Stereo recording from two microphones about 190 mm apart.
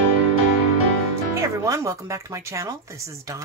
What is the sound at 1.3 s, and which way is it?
Speech, 15° right (ahead or behind).